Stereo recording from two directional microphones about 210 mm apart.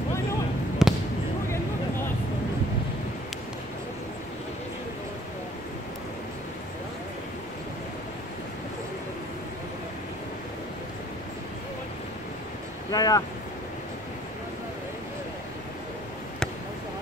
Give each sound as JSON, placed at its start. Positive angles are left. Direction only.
{"t": 0.8, "sound": "basketball bounce", "side_deg": 0}
{"t": 12.9, "sound": "speech", "side_deg": 15}